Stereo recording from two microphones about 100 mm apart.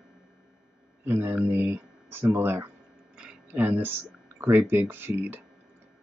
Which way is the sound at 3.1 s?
10° right (ahead or behind).